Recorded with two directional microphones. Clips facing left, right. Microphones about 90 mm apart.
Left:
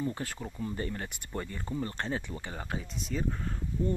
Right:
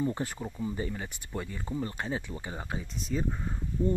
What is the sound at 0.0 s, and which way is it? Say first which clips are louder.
Speech: right 3 dB; 20° right (ahead or behind).